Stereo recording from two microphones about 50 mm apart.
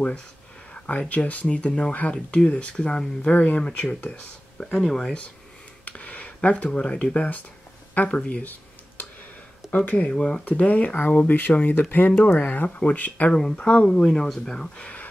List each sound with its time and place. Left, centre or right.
0.8 s speech: left; by 3.1 s centre
3.3 s speech: left
4.7 s speech: centre
5.9 s speech: left
9.8 s speech: left
10.1 s speech: centre
10.4 s speech: left
13.3 s speech: centre
13.7 s speech: left